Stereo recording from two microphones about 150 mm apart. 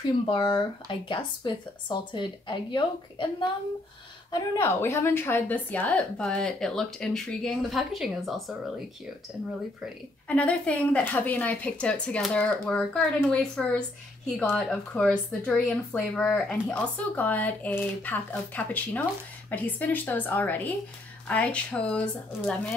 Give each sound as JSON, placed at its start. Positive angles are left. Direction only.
{"t": 0.2, "sound": "speech", "side_deg": 30}
{"t": 4.3, "sound": "speech", "side_deg": 20}
{"t": 10.2, "sound": "speech", "side_deg": 10}